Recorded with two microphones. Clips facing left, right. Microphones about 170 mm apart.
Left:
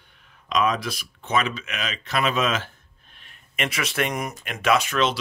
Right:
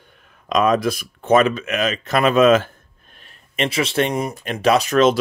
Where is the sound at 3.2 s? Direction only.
30° right (ahead or behind).